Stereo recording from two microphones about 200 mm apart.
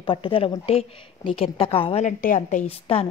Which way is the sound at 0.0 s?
25° left (ahead or behind).